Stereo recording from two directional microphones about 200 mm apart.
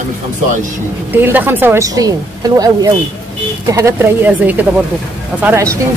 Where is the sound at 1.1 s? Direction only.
10° right (ahead or behind).